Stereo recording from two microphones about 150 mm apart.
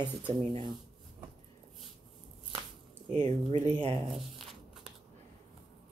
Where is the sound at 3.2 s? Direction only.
40° right (ahead or behind).